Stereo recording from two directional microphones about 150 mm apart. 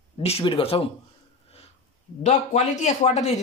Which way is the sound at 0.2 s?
40° left (ahead or behind).